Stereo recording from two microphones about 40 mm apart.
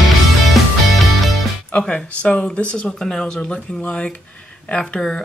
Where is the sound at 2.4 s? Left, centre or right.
Left.